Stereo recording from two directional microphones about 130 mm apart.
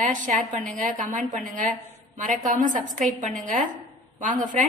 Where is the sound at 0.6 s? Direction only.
90° right; by 1.3 s 75° right (ahead or behind).